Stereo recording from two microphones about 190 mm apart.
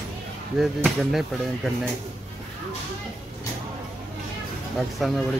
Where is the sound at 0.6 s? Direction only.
Centre (ahead or behind).